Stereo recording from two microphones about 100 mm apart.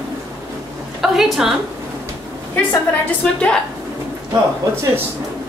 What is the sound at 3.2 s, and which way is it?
Speech, 10° left (ahead or behind).